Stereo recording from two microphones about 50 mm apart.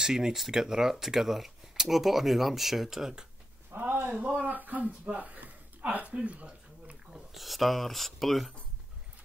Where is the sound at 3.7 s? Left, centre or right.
Right.